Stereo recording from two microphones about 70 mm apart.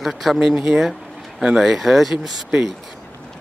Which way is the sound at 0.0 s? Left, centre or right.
Centre.